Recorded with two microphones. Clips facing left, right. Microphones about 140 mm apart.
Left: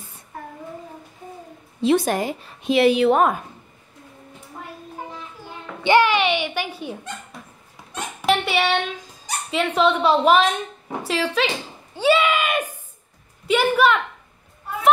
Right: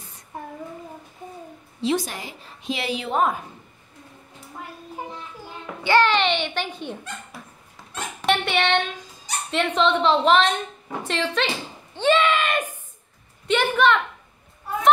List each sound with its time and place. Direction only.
0.3 s child singing: 20° right (ahead or behind)
1.8 s a woman's voice: 55° left (ahead or behind)
5.9 s a child's voice: 10° left (ahead or behind)
8.3 s a woman's voice: 5° left (ahead or behind)
11.9 s a sound: 10° left (ahead or behind)
13.5 s a child's voice: 5° left (ahead or behind)